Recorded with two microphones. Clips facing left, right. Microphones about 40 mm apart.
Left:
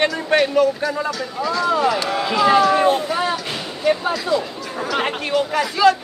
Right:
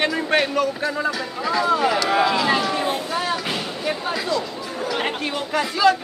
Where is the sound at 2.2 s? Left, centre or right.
Centre.